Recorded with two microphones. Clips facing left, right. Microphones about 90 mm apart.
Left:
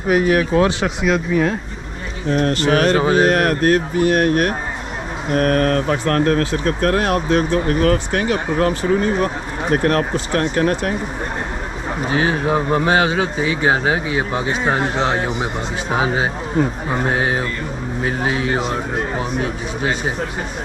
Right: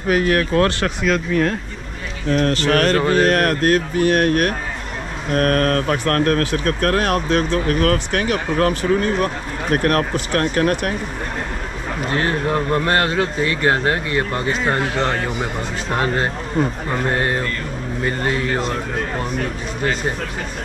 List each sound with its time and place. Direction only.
0.1 s speech: 5° left (ahead or behind)
2.7 s a sound: 55° right (ahead or behind)
3.0 s speech: 10° left (ahead or behind)
3.4 s speech: 25° left (ahead or behind)
5.3 s speech: 55° right (ahead or behind)
5.6 s speech: 25° left (ahead or behind)
12.0 s speech: 5° left (ahead or behind)